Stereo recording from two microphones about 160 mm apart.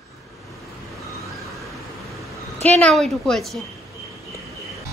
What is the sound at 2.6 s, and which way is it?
Speech, 5° left (ahead or behind).